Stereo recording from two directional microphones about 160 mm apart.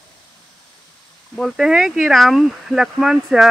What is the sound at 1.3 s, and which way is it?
Speech, centre (ahead or behind).